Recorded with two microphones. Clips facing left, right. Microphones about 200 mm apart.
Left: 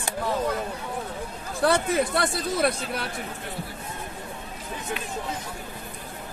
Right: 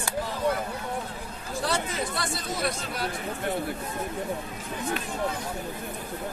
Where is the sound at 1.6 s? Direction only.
55° left (ahead or behind).